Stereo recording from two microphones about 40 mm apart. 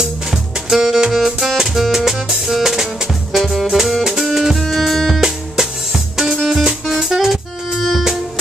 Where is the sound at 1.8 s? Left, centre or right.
Centre.